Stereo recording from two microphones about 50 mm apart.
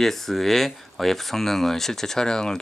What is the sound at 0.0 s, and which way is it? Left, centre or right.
Speech, centre.